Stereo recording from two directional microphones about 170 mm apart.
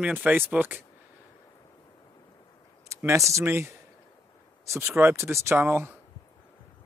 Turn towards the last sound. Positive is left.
turn(degrees=-15)  # may be behind; listen again after turning